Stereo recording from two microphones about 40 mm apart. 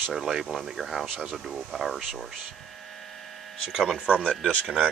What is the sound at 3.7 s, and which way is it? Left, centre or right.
Speech, centre.